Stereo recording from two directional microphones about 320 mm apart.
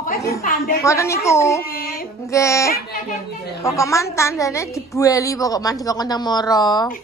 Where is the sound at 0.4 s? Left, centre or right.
Left.